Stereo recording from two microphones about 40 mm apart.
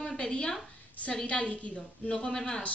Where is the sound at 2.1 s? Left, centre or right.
Left.